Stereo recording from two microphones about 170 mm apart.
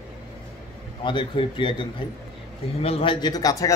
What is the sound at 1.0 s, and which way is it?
Speech, 30° left (ahead or behind).